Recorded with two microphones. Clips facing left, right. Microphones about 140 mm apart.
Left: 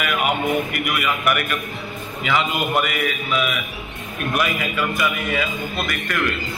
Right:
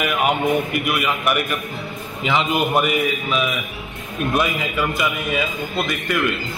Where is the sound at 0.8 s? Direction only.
25° right (ahead or behind).